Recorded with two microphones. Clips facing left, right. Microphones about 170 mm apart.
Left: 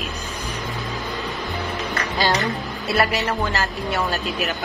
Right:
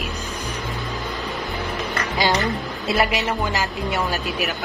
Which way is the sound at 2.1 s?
15° right (ahead or behind).